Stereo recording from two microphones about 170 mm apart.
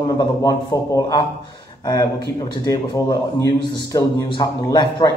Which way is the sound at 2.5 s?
20° left (ahead or behind).